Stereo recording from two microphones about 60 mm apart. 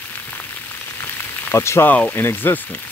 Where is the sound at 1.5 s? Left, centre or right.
Left.